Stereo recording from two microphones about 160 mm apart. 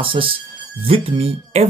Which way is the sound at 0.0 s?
35° right (ahead or behind).